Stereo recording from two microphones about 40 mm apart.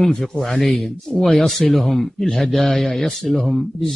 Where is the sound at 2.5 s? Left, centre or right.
Centre.